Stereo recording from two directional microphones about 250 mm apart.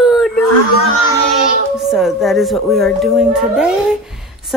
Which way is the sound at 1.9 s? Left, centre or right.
Centre.